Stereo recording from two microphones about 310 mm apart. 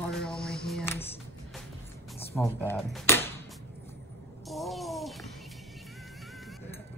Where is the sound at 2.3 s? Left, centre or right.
Centre.